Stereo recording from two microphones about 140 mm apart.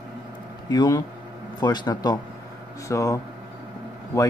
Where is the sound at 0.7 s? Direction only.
30° left (ahead or behind).